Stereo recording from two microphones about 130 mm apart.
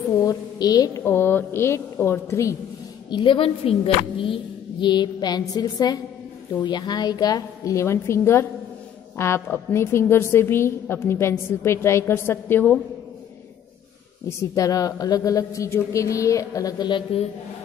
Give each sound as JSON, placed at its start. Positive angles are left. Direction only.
{"t": 0.2, "sound": "a sound", "side_deg": 30}
{"t": 1.0, "sound": "a woman's voice", "side_deg": 15}
{"t": 3.1, "sound": "a woman's voice", "side_deg": 40}
{"t": 14.5, "sound": "a woman's voice", "side_deg": 25}